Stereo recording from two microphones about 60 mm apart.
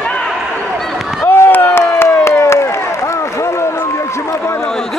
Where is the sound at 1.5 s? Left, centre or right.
Left.